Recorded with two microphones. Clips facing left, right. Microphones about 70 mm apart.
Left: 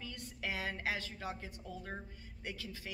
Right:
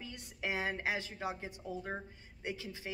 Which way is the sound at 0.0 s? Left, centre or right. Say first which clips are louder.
Right 2 dB; right.